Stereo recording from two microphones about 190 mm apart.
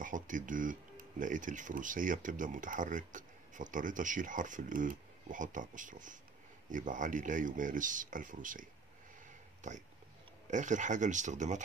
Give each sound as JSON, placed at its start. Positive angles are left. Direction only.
{"t": 0.0, "sound": "speech", "side_deg": -45}
{"t": 10.5, "sound": "speech", "side_deg": -40}